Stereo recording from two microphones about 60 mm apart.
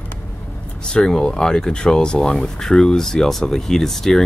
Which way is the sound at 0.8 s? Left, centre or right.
Centre.